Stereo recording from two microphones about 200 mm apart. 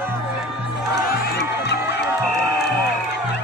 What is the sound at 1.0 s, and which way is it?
Music, 55° left (ahead or behind).